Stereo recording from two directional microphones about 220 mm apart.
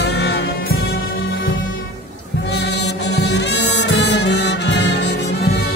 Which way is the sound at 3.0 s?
50° left (ahead or behind).